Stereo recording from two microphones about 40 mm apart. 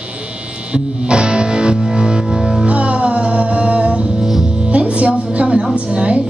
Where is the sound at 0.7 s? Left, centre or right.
Right.